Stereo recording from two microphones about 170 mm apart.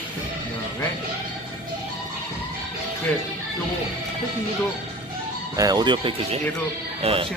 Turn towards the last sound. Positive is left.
turn(degrees=-35)  # may be behind; listen again after turning